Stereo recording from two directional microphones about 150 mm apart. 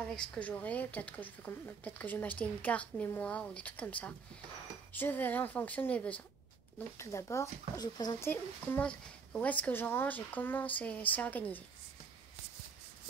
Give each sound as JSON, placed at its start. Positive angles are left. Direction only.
{"t": 0.0, "sound": "a woman's voice", "side_deg": 5}
{"t": 7.0, "sound": "speech", "side_deg": 20}
{"t": 8.3, "sound": "a woman's voice", "side_deg": 15}